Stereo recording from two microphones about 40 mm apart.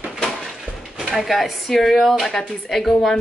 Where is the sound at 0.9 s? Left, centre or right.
Centre.